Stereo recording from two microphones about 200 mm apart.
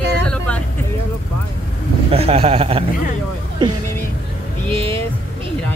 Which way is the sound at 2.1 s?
30° right (ahead or behind).